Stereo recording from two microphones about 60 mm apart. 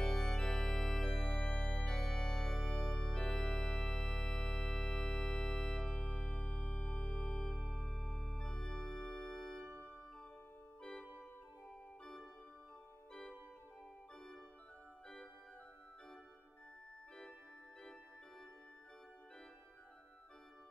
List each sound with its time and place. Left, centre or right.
0.0 s organ: centre
1.9 s organ: centre
5.9 s music: left; by 9.7 s centre
9.7 s music: right
10.8 s organ: centre